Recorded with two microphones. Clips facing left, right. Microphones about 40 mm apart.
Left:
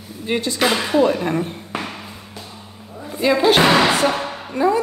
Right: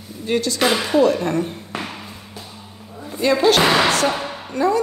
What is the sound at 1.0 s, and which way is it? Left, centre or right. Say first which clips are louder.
Speech: right 1 dB; centre.